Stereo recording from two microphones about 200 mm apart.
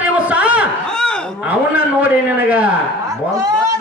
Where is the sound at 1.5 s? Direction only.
5° right (ahead or behind).